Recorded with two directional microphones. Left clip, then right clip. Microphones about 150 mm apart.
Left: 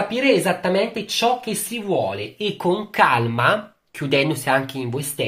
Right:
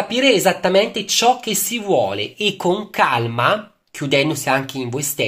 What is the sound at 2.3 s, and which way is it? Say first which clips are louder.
Speech: right 4 dB; 35° right (ahead or behind).